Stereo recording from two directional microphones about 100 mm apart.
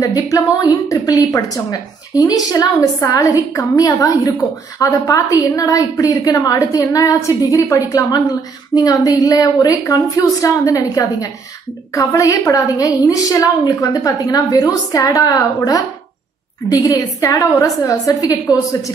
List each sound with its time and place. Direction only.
0.0 s a woman's voice: 35° left (ahead or behind)
16.8 s a woman's voice: 35° left (ahead or behind)